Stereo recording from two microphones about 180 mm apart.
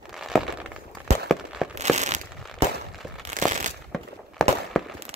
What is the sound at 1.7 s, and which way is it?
Crumpling, 40° right (ahead or behind).